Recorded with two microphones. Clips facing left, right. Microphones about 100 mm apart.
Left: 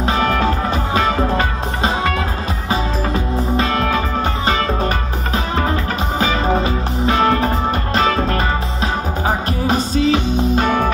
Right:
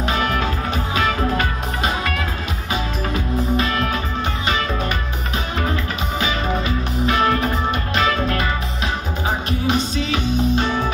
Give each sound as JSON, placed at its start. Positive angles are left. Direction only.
{"t": 0.0, "sound": "music", "side_deg": 35}
{"t": 5.3, "sound": "music", "side_deg": 35}
{"t": 9.7, "sound": "music", "side_deg": 35}